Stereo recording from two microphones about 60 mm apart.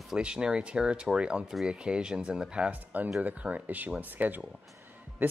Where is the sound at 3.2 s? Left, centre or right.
Right.